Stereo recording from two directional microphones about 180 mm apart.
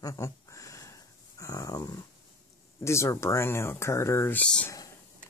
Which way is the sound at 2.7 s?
15° left (ahead or behind).